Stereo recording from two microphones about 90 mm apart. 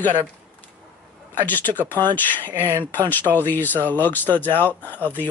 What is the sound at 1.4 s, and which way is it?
Speech, 20° left (ahead or behind).